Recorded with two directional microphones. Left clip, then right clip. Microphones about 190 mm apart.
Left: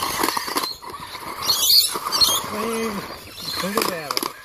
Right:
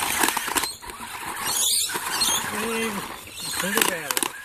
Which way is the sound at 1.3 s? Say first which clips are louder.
Left 7 dB; 10° right (ahead or behind).